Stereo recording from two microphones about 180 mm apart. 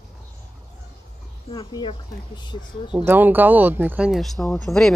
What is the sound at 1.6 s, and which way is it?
Speech, 30° left (ahead or behind).